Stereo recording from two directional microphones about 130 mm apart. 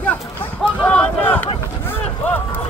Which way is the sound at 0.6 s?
10° left (ahead or behind).